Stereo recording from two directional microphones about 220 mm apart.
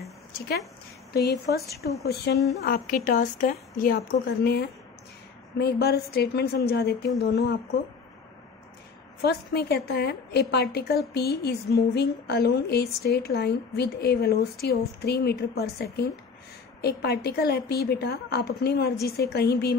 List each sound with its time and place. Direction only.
1.8 s a woman's voice: 45° left (ahead or behind)
9.2 s a woman's voice: 45° left (ahead or behind)